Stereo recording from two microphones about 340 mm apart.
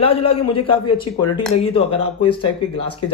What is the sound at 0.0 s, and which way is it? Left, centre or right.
Speech, centre.